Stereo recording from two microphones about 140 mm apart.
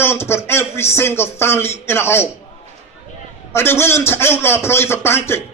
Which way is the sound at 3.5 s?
15° left (ahead or behind).